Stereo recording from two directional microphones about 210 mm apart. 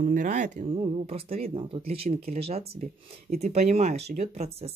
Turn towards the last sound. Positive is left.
turn(degrees=-30)  # may be behind; listen again after turning